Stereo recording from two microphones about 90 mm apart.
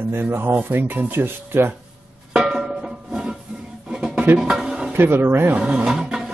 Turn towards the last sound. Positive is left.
turn(degrees=-5)  # may be behind; listen again after turning